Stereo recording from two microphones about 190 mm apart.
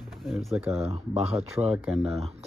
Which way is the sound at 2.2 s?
30° right (ahead or behind).